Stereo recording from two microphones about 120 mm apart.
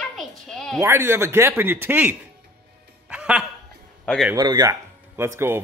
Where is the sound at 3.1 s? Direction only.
10° right (ahead or behind).